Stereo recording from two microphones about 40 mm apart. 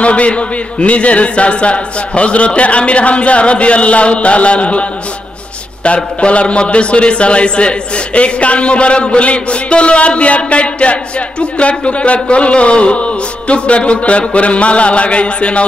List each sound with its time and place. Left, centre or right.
0.0 s a man's voice: left
5.9 s a man's voice: left